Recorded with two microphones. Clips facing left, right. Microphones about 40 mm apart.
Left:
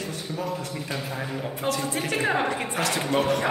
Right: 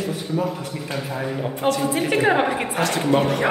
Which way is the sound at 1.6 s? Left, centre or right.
Centre.